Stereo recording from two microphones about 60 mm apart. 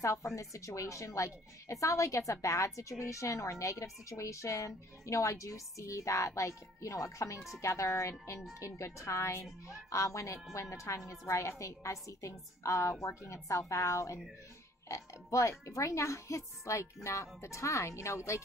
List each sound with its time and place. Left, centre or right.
0.0 s a woman's voice: left